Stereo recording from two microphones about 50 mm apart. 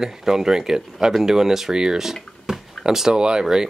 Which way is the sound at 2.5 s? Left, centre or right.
Centre.